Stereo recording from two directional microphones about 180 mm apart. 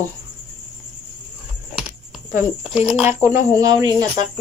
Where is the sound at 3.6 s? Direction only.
20° right (ahead or behind).